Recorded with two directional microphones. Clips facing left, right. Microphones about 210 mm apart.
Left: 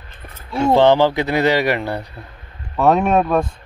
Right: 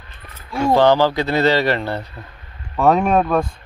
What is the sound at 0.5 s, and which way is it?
Speech, 20° left (ahead or behind).